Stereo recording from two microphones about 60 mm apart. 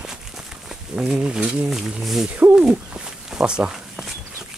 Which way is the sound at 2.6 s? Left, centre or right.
Centre.